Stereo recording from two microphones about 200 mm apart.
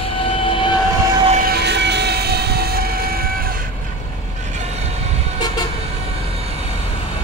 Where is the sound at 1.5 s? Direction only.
55° right (ahead or behind).